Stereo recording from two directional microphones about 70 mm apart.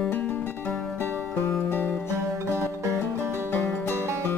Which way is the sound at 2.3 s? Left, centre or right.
Right.